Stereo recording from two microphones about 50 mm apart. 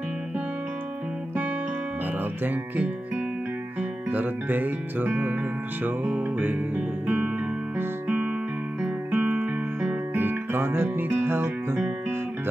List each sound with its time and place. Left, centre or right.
4.1 s music: right
9.1 s music: right
10.1 s music: right